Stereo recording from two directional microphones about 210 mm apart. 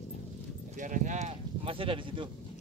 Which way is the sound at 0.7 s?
40° right (ahead or behind).